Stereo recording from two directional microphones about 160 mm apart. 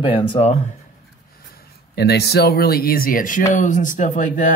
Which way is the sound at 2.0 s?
90° left.